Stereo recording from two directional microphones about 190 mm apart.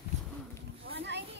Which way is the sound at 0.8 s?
65° right (ahead or behind).